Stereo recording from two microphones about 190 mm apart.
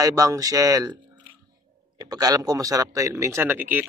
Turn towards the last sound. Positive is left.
turn(degrees=-10)  # may be behind; listen again after turning